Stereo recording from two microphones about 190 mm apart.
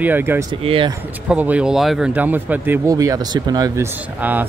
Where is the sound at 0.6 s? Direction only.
30° right (ahead or behind).